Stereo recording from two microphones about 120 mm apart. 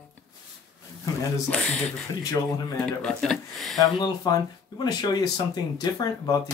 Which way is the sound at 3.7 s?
35° left (ahead or behind).